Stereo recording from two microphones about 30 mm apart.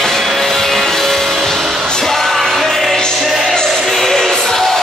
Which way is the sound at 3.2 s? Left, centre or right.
Centre.